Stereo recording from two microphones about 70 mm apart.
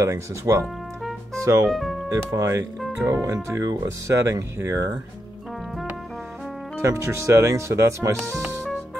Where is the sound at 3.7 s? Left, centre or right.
Right.